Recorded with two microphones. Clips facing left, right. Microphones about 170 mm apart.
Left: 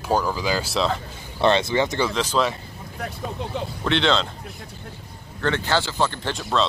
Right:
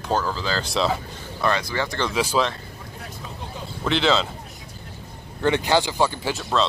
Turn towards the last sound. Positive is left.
turn(degrees=0)  # may be behind; listen again after turning